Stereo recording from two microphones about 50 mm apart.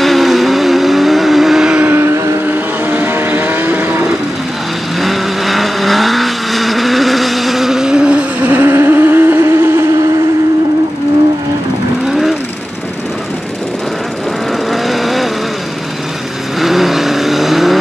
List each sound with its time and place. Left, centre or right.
0.0 s vehicle: centre
1.9 s vehicle: right
2.4 s vehicle: right
5.0 s vehicle: centre
8.5 s vehicle: right
14.7 s vehicle: centre
16.5 s vehicle: centre